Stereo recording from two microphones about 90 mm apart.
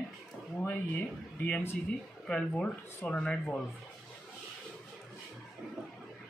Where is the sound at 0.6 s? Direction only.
20° left (ahead or behind).